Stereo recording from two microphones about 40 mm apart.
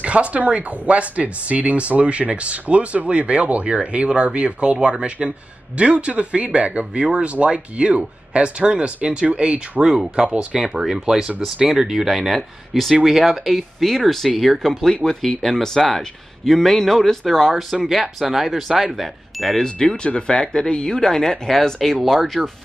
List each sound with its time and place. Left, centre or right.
0.0 s speech: right; by 17.7 s centre
17.8 s speech: centre
19.6 s speech: centre